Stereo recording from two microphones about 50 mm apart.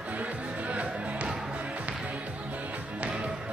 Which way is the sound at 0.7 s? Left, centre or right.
Right.